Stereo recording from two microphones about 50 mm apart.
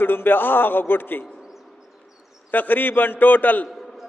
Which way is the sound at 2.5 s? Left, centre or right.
Left.